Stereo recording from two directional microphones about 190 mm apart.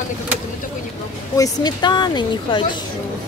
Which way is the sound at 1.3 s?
20° left (ahead or behind).